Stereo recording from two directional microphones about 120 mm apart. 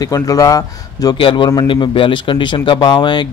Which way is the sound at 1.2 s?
45° left (ahead or behind).